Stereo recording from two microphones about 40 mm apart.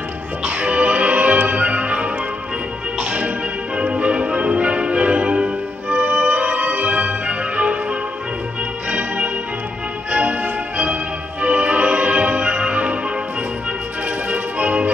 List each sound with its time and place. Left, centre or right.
0.4 s music: right
14.0 s music: right